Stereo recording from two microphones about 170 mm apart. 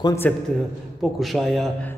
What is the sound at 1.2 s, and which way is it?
Speech, centre (ahead or behind).